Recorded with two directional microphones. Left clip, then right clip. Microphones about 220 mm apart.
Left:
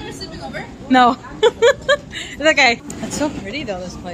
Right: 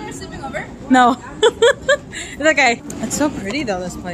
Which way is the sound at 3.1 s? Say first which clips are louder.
Right 3 dB; 20° right (ahead or behind).